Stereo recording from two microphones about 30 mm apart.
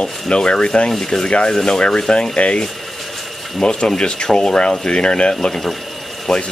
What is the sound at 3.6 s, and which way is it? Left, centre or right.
Speech, left.